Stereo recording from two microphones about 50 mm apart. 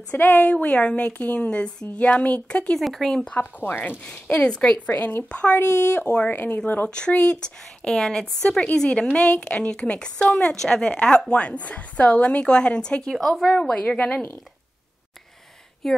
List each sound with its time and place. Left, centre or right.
0.2 s speech: left
0.5 s a woman's voice: left
2.8 s speech: centre
3.3 s speech: left
4.4 s a woman's voice: centre
4.9 s speech: left
5.6 s speech: left
6.1 s a woman's voice: left
13.1 s speech: centre; by 14.2 s left
15.8 s speech: centre